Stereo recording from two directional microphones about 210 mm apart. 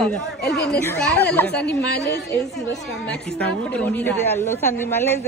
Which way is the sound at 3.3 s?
5° left (ahead or behind).